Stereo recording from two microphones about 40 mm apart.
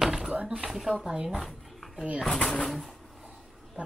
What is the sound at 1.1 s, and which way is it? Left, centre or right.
Speech, centre.